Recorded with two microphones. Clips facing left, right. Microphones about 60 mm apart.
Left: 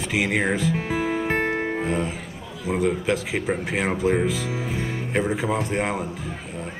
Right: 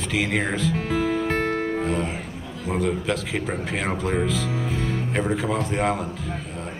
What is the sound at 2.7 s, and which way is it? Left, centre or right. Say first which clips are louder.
Speech: left 2 dB; centre.